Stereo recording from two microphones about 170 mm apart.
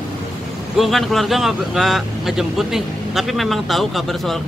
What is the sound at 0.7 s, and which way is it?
Speech, centre (ahead or behind).